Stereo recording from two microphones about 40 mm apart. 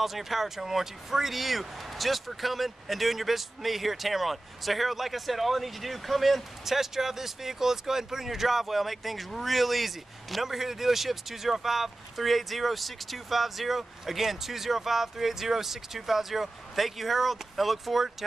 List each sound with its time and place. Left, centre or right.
0.0 s speech: centre